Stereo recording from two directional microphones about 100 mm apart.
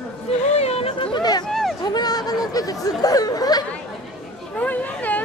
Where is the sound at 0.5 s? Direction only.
90° left.